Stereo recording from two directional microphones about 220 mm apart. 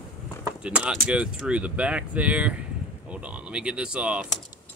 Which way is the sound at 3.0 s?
5° right (ahead or behind).